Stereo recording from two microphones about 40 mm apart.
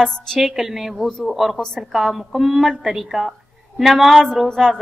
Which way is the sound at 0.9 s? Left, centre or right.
Centre.